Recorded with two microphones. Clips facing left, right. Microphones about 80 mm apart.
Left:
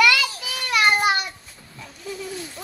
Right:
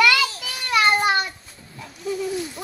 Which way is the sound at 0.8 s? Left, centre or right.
Centre.